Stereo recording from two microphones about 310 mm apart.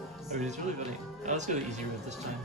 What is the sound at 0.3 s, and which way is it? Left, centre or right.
Speech, right.